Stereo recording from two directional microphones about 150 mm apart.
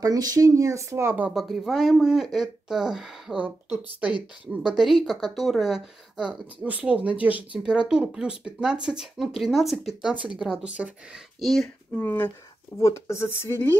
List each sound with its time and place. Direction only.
0.0 s speech: 25° right (ahead or behind)
1.4 s speech: centre (ahead or behind)
12.0 s speech: 15° left (ahead or behind)